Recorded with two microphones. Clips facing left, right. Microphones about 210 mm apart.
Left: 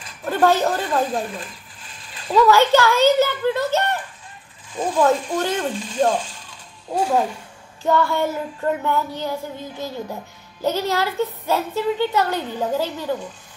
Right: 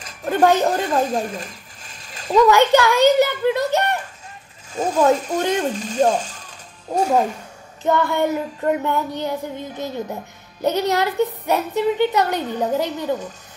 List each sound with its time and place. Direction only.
0.4 s speech: 15° right (ahead or behind)
0.7 s a sound: 45° right (ahead or behind)
2.3 s speech: 15° right (ahead or behind)
4.7 s speech: 45° right (ahead or behind)
7.8 s child singing: 20° right (ahead or behind)
10.6 s speech: 20° right (ahead or behind)